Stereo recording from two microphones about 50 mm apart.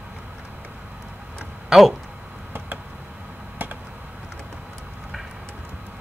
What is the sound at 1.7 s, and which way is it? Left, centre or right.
Speech, centre.